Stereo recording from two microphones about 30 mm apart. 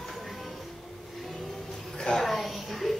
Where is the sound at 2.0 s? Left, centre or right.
Centre.